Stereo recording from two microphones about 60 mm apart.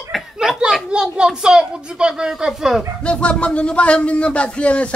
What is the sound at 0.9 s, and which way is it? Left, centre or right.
A woman's voice, centre.